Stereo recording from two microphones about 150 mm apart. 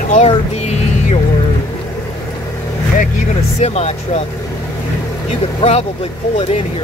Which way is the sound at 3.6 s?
45° left (ahead or behind).